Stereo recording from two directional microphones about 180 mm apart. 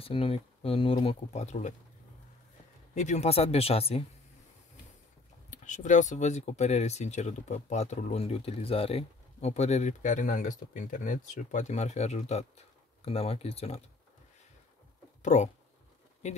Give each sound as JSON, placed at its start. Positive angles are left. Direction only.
{"t": 0.0, "sound": "speech", "side_deg": 30}
{"t": 2.9, "sound": "speech", "side_deg": 40}
{"t": 5.5, "sound": "speech", "side_deg": 45}
{"t": 15.2, "sound": "speech", "side_deg": 40}